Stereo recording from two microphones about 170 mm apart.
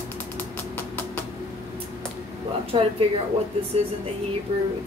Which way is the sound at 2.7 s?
30° right (ahead or behind).